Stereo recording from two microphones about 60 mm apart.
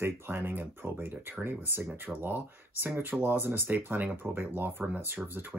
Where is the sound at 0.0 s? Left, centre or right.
Right.